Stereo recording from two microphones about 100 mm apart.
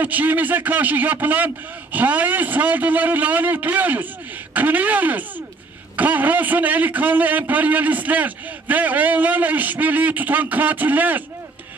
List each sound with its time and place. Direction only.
0.0 s a man's voice: 15° right (ahead or behind)